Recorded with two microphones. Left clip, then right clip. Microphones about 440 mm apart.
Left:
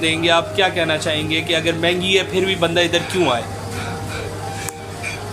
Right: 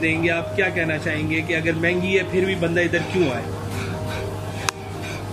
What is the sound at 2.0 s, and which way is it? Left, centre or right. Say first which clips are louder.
Speech: left 3 dB; centre.